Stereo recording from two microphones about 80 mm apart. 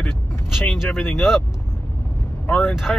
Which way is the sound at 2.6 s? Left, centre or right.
Centre.